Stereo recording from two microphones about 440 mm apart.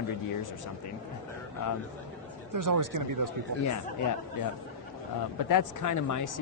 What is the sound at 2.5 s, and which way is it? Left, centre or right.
Speech, right.